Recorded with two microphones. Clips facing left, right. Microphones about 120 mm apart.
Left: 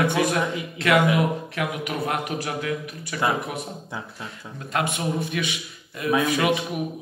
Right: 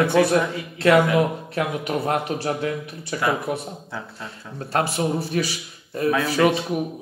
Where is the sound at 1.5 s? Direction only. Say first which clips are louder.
Right 4 dB; 30° right (ahead or behind).